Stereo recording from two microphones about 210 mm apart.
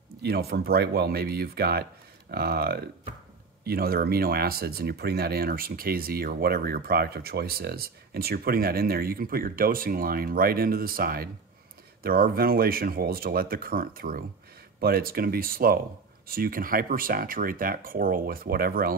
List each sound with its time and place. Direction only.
0.2 s speech: 50° right (ahead or behind)